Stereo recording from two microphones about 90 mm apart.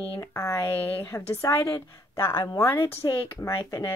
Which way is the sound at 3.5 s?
45° left (ahead or behind).